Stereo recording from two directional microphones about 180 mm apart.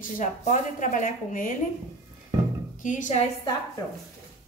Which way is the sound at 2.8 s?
45° left (ahead or behind).